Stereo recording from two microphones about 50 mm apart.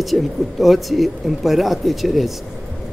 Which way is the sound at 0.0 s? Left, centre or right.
Centre.